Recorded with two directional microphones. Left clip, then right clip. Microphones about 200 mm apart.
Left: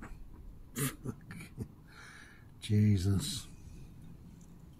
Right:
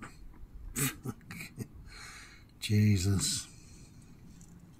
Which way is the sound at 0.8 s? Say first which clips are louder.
Right 3 dB; 20° right (ahead or behind).